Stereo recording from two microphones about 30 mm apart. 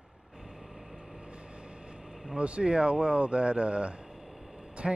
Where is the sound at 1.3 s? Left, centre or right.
Right.